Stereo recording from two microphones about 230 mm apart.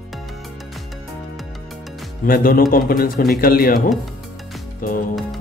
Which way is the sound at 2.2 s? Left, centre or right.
Left.